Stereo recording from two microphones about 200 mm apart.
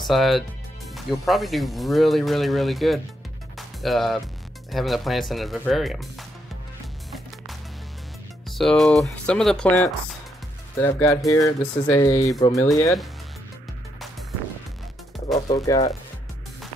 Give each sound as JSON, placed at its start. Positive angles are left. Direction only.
{"t": 0.0, "sound": "speech", "side_deg": 0}
{"t": 3.5, "sound": "music", "side_deg": 0}
{"t": 4.6, "sound": "speech", "side_deg": 0}
{"t": 8.5, "sound": "speech", "side_deg": 0}
{"t": 15.5, "sound": "speech", "side_deg": 15}